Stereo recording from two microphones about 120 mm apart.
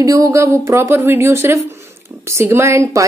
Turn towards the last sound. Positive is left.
turn(degrees=-25)  # may be behind; listen again after turning